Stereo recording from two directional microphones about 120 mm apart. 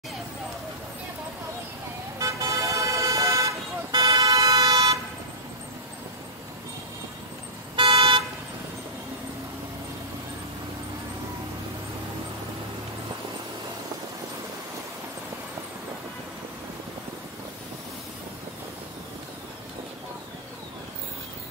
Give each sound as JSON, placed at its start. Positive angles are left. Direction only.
{"t": 2.1, "sound": "toot", "side_deg": -30}
{"t": 7.7, "sound": "car", "side_deg": -45}